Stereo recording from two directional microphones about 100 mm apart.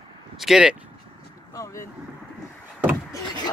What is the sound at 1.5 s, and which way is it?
Speech, 30° left (ahead or behind).